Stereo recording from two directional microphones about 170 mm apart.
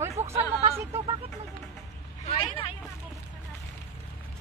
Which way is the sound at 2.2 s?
35° left (ahead or behind).